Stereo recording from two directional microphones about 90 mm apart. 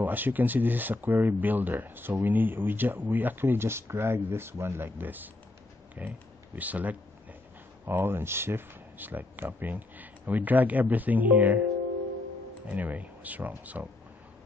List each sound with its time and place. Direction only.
0.0 s speech: 20° right (ahead or behind)
12.6 s speech: 15° right (ahead or behind)